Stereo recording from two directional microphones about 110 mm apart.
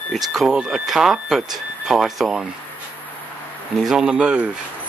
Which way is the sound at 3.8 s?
5° right (ahead or behind).